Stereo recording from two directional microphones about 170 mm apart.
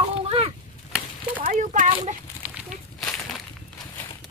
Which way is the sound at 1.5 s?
50° right (ahead or behind).